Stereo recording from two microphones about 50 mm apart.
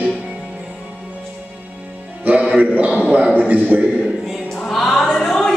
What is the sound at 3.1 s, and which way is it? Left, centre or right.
Speech, right.